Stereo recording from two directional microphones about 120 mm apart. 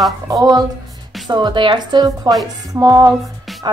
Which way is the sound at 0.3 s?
30° right (ahead or behind).